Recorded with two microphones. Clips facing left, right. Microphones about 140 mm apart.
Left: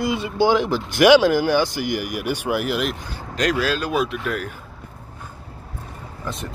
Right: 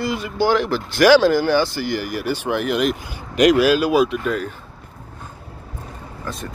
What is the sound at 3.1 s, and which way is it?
Speech, 15° right (ahead or behind).